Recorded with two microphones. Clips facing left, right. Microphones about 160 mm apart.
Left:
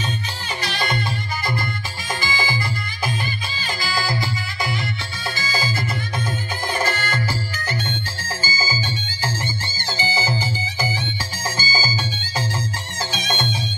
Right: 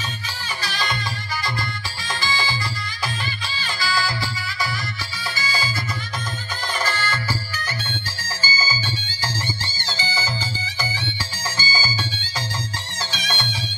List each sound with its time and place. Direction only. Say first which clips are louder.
0.6 s music: left 3 dB; 55° left (ahead or behind)
2.2 s music: even; 50° left (ahead or behind)
3.8 s music: even; 50° left (ahead or behind)
5.3 s music: left 1 dB; 50° left (ahead or behind)
6.7 s music: left 2 dB; 55° left (ahead or behind)
8.2 s music: left 1 dB; 50° left (ahead or behind)
11.4 s music: left 2 dB; 45° left (ahead or behind)
13.1 s music: left 4 dB; 50° left (ahead or behind)